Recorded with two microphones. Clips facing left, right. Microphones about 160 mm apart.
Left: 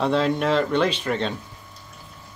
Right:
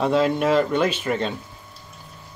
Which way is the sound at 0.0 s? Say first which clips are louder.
Right 2 dB; 5° right (ahead or behind).